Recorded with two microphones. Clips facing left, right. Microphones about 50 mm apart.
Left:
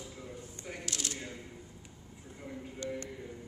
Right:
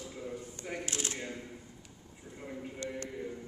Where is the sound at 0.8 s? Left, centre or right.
Right.